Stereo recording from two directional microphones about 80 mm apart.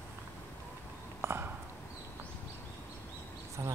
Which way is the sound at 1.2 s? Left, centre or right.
Right.